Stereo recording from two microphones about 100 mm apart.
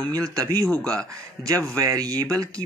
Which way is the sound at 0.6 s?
10° left (ahead or behind).